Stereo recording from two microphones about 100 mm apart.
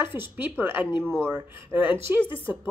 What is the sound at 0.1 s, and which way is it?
Speech, 20° right (ahead or behind).